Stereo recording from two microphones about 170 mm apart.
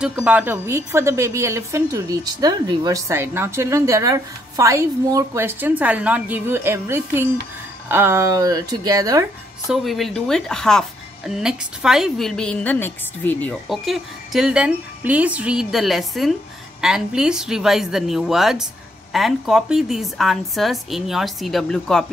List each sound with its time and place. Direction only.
0.0 s a woman's voice: 5° right (ahead or behind)
9.7 s speech: centre (ahead or behind)
13.7 s speech: centre (ahead or behind)